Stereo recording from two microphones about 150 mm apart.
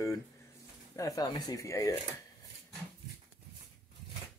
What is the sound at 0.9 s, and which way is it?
Speech, 20° left (ahead or behind).